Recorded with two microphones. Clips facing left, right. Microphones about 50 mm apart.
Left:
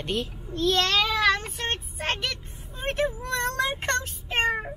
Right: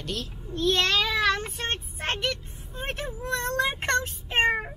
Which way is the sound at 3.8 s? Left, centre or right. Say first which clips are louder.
Right 2 dB; right.